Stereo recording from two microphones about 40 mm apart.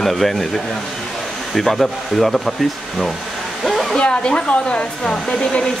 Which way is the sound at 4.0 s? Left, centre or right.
Left.